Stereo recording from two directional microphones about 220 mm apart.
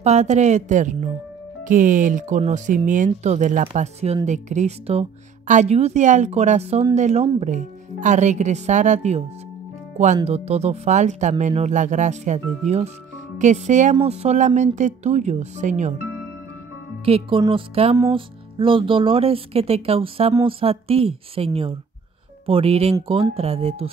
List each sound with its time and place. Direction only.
0.0 s speech: 30° right (ahead or behind)
10.2 s speech: 30° right (ahead or behind)
17.0 s speech: 25° right (ahead or behind)
22.5 s speech: 25° right (ahead or behind)